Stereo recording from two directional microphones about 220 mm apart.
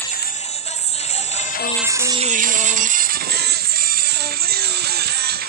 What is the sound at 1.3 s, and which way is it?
Music, 40° left (ahead or behind).